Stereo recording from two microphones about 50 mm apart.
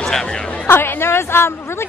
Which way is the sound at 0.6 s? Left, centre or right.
Left.